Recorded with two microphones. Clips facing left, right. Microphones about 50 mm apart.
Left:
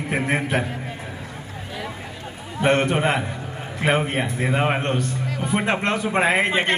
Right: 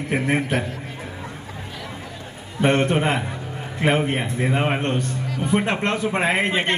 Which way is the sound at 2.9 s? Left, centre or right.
Centre.